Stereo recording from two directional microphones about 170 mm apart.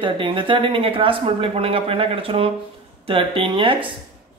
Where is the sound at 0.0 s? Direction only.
30° right (ahead or behind).